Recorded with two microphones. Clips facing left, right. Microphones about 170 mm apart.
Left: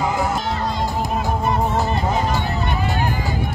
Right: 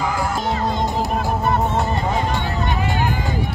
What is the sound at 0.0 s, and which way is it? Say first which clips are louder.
Music: left 1 dB; 20° left (ahead or behind).